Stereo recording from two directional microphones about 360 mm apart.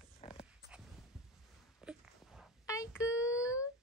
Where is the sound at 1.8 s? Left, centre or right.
Centre.